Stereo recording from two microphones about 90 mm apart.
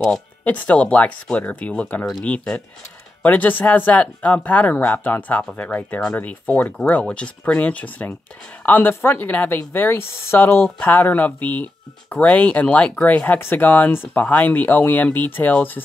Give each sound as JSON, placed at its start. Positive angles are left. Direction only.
{"t": 0.0, "sound": "a woman's voice", "side_deg": 10}